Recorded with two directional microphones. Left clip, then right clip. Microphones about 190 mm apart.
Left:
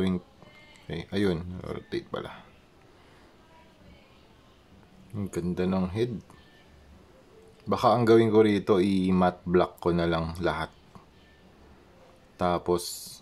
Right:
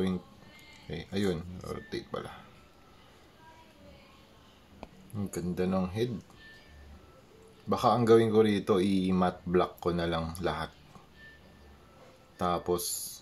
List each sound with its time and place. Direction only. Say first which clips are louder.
0.8 s speech: left 4 dB; 35° left (ahead or behind)
5.1 s speech: left 4 dB; 30° left (ahead or behind)
7.7 s speech: left 3 dB; 30° left (ahead or behind)
12.4 s speech: left 4 dB; 30° left (ahead or behind)